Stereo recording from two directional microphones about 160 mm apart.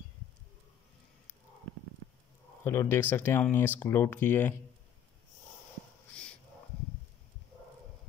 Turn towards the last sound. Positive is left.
turn(degrees=5)  # may be behind; listen again after turning